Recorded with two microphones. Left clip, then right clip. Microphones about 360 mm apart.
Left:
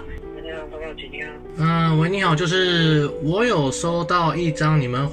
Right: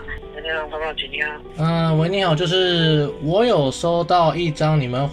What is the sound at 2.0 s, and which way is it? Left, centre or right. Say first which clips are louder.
Speech: right 1 dB; centre.